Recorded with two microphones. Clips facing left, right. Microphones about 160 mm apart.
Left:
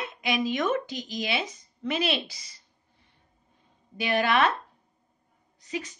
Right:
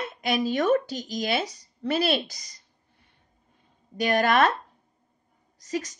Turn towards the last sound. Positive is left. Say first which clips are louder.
# right 4 dB
turn(degrees=-40)  # may be behind; listen again after turning